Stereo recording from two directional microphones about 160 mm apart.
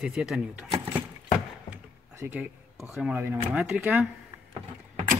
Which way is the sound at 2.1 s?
15° right (ahead or behind).